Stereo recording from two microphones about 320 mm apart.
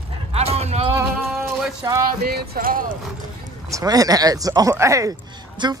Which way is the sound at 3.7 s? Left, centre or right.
Centre.